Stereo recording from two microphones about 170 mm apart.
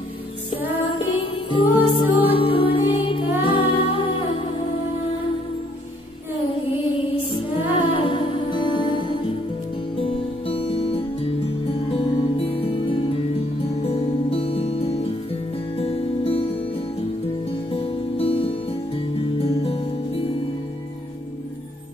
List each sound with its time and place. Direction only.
1.2 s music: 30° left (ahead or behind)
7.7 s music: 30° left (ahead or behind)
17.5 s music: 35° left (ahead or behind)